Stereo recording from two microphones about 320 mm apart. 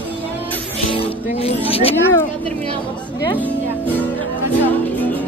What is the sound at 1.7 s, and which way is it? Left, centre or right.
Speech, centre.